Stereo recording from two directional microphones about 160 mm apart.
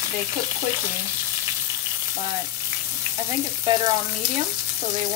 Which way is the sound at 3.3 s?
25° right (ahead or behind).